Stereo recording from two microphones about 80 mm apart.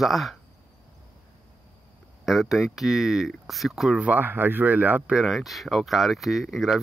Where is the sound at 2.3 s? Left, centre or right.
Centre.